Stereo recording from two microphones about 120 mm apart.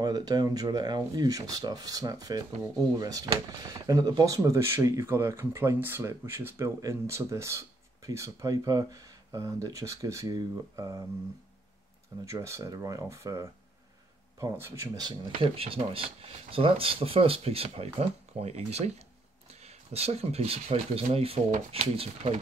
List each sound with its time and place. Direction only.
0.0 s speech: 35° right (ahead or behind)
12.3 s speech: 25° right (ahead or behind)
15.5 s speech: 50° right (ahead or behind)
21.5 s speech: 90° right
21.9 s speech: 55° right (ahead or behind)